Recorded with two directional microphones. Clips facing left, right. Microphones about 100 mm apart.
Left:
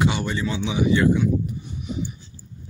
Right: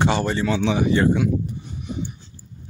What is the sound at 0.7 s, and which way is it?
Speech, 40° right (ahead or behind).